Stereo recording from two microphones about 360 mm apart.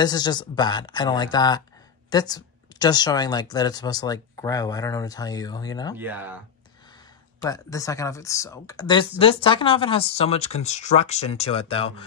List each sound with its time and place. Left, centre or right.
0.0 s speech: centre
5.9 s speech: centre
7.4 s speech: centre